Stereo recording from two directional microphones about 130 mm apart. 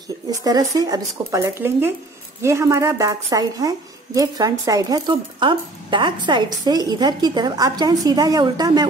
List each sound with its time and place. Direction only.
0.3 s a woman's voice: 25° right (ahead or behind)